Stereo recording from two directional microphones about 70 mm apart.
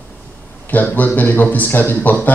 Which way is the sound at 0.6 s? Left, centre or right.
Left.